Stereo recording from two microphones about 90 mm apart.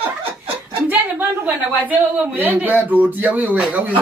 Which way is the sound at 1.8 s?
20° right (ahead or behind).